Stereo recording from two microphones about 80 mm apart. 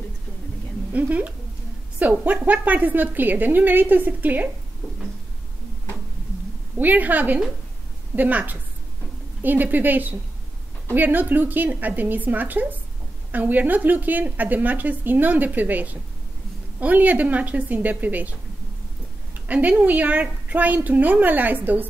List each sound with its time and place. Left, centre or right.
0.9 s a woman's voice: centre
6.8 s a woman's voice: right
19.3 s a woman's voice: centre